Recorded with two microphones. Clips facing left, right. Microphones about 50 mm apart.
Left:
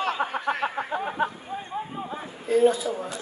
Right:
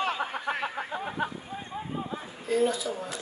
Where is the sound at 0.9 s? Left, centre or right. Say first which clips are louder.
Left 5 dB; left.